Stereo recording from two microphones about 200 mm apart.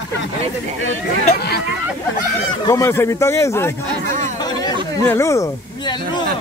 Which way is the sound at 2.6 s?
15° left (ahead or behind).